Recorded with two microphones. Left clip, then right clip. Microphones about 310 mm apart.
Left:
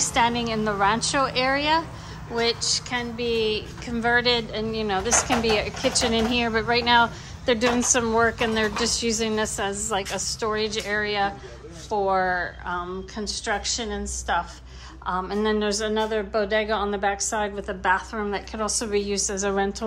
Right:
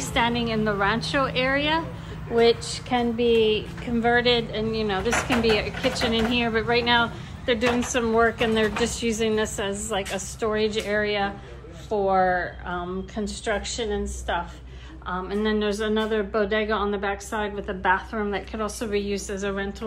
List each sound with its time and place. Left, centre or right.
0.0 s a woman's voice: centre